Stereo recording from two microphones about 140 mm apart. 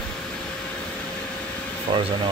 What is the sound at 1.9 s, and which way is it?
Speech, 35° right (ahead or behind).